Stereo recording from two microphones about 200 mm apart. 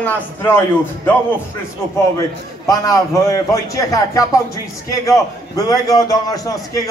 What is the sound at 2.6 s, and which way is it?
A man's voice, 15° left (ahead or behind).